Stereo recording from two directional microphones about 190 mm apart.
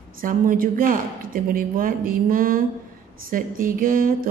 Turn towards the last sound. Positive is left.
turn(degrees=-45)  # may be behind; listen again after turning